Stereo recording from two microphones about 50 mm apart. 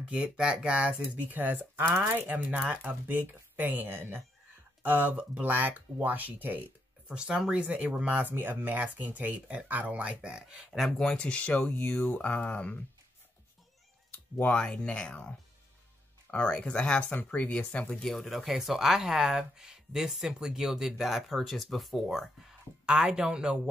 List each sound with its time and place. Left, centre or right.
0.1 s speech: right
1.3 s speech: right
5.1 s speech: right
5.5 s speech: right
7.1 s speech: centre
8.1 s speech: right; by 10.7 s centre
10.7 s speech: centre
11.1 s speech: left
14.1 s a sound: left
14.6 s speech: left
17.1 s speech: left
18.0 s speech: centre